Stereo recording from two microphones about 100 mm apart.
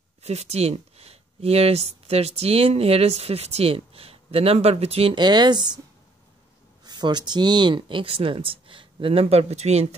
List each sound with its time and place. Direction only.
0.2 s speech: 90° right
5.1 s speech: 50° right (ahead or behind)
6.8 s speech: 45° right (ahead or behind); by 9.8 s 90° right